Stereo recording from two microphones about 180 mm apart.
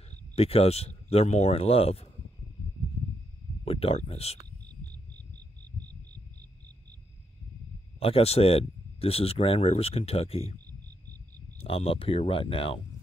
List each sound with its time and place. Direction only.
0.1 s speech: 35° left (ahead or behind)
3.6 s speech: 30° left (ahead or behind)
8.0 s speech: 35° left (ahead or behind)
11.6 s speech: 30° left (ahead or behind)